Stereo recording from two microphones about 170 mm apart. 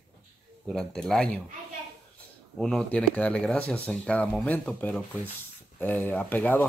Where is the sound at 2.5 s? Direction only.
5° left (ahead or behind).